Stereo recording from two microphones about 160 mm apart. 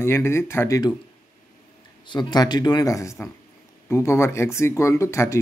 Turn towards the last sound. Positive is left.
turn(degrees=15)  # may be behind; listen again after turning